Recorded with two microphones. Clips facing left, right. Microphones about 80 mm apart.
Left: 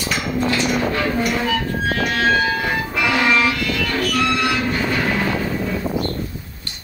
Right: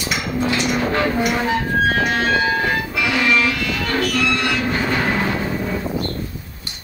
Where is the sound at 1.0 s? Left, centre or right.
Centre.